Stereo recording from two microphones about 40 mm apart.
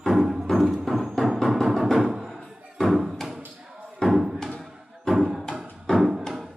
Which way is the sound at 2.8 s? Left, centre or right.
Centre.